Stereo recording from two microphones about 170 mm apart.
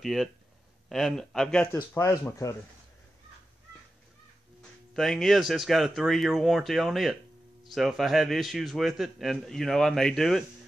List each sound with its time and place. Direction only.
0.0 s a man's voice: centre (ahead or behind)
1.7 s speech: 15° left (ahead or behind)
4.9 s a man's voice: centre (ahead or behind)